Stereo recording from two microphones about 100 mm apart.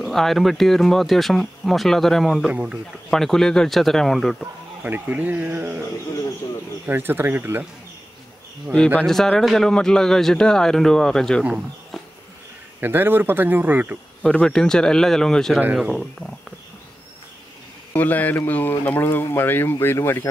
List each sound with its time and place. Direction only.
0.0 s a man's voice: centre (ahead or behind)
2.4 s speech: 10° right (ahead or behind)
3.1 s a man's voice: 5° left (ahead or behind)
4.8 s speech: 15° right (ahead or behind)
6.9 s speech: 20° right (ahead or behind)
8.7 s a man's voice: 10° left (ahead or behind)
12.8 s speech: 20° right (ahead or behind)
14.2 s speech: 10° left (ahead or behind)
15.6 s speech: 10° right (ahead or behind)
15.9 s speech: 5° left (ahead or behind)
17.9 s speech: 15° left (ahead or behind)